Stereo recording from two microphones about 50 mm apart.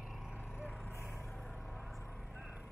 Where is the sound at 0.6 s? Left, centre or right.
Left.